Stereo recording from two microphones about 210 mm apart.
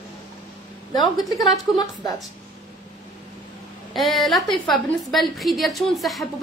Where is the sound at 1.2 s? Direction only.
Centre (ahead or behind).